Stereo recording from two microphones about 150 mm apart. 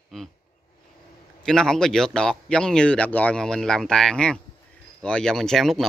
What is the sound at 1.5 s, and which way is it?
Speech, 5° left (ahead or behind).